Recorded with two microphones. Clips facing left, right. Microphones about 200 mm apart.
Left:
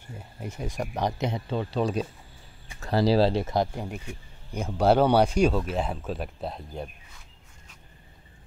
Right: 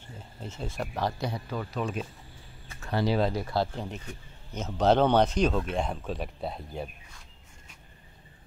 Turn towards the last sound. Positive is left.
turn(degrees=0)  # may be behind; listen again after turning